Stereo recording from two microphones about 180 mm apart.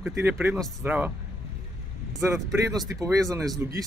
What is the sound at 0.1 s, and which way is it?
Speech, 15° right (ahead or behind).